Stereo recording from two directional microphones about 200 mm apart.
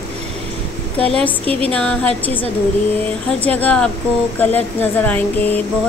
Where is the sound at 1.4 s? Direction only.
30° right (ahead or behind).